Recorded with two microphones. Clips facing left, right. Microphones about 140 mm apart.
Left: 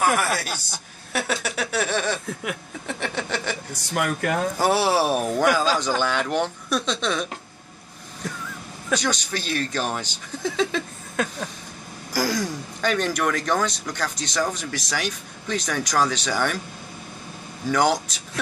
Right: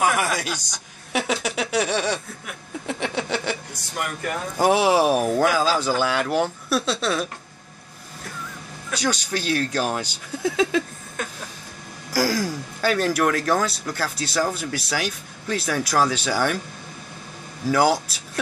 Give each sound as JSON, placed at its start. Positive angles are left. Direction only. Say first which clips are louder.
{"t": 0.3, "sound": "speech", "louder": "even", "side_deg": 5}
{"t": 1.9, "sound": "speech", "louder": "right 1 dB", "side_deg": -10}
{"t": 3.9, "sound": "speech", "louder": "left 4 dB", "side_deg": 85}
{"t": 4.6, "sound": "speech", "louder": "right 5 dB", "side_deg": -15}
{"t": 8.9, "sound": "speech", "louder": "even", "side_deg": -10}
{"t": 12.1, "sound": "speech", "louder": "right 2 dB", "side_deg": -5}
{"t": 17.6, "sound": "speech", "louder": "right 2 dB", "side_deg": -5}